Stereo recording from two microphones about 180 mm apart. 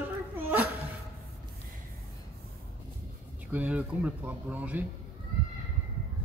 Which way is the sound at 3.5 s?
10° right (ahead or behind).